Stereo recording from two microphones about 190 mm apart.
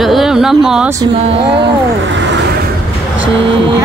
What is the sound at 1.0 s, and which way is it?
Speech, 30° right (ahead or behind).